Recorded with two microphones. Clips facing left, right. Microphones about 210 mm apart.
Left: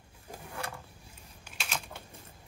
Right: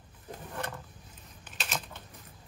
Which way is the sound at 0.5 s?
10° left (ahead or behind).